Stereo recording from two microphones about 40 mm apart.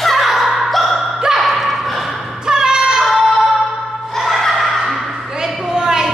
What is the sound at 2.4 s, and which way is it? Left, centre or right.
Singing, centre.